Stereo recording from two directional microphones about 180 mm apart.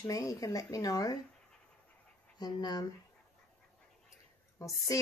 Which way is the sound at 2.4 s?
20° left (ahead or behind).